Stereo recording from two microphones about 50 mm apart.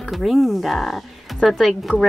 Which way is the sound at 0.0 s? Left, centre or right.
Centre.